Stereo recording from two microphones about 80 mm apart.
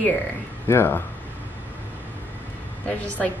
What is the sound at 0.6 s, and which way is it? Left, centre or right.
Speech, left.